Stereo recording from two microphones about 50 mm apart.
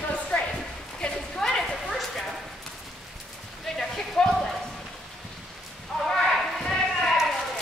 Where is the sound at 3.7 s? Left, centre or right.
Centre.